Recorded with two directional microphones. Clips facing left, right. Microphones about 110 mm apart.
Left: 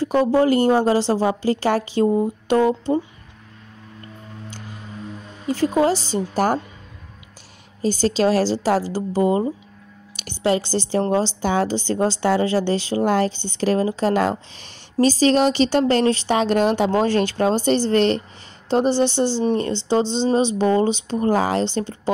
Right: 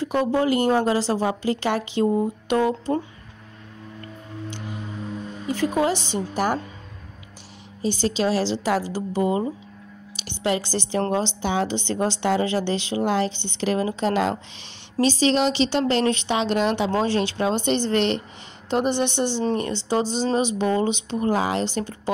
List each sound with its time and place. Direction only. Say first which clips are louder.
0.0 s a woman's voice: left 4 dB; 35° left (ahead or behind)
5.5 s a woman's voice: left 4 dB; 35° left (ahead or behind)
7.8 s a woman's voice: left 4 dB; 40° left (ahead or behind)
10.1 s a sound: left 1 dB; 45° left (ahead or behind)
10.4 s a woman's voice: left 4 dB; 30° left (ahead or behind)